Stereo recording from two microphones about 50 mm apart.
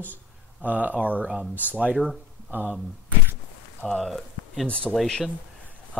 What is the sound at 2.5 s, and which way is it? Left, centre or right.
Speech, right.